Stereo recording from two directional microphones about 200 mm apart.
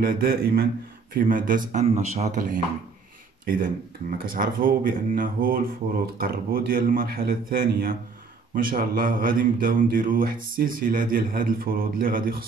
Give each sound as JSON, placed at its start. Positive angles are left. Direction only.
{"t": 0.0, "sound": "speech", "side_deg": -45}